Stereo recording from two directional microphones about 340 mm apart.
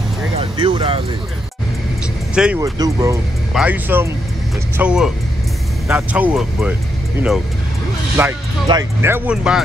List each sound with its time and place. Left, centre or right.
0.4 s speech: centre
2.3 s speech: centre
8.2 s speech: centre